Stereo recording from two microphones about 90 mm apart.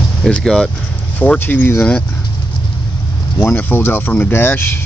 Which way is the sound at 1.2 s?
20° left (ahead or behind).